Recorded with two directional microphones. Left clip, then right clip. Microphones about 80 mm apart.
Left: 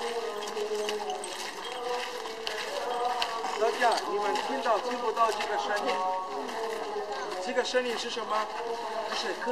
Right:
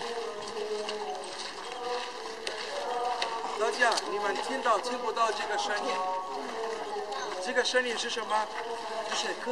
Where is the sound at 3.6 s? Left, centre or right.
Right.